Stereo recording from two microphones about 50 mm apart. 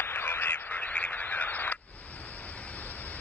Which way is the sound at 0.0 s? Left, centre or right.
Left.